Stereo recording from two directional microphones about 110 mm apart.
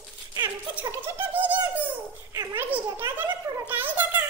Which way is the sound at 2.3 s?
35° right (ahead or behind).